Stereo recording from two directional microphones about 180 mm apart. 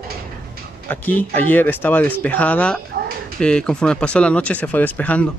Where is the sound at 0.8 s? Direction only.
10° left (ahead or behind).